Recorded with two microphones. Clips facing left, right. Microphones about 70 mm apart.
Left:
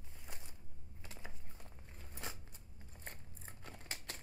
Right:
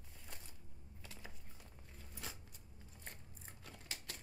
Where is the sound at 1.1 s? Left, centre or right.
Left.